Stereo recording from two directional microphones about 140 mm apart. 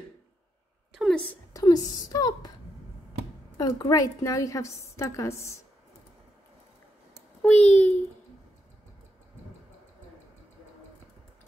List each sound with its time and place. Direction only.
0.9 s a sound: centre (ahead or behind)
1.3 s a woman's voice: 25° left (ahead or behind)
3.5 s a woman's voice: 25° left (ahead or behind)
7.4 s a child's voice: 10° left (ahead or behind)